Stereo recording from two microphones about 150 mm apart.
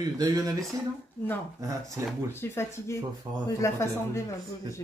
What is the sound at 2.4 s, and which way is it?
Speech, 15° left (ahead or behind).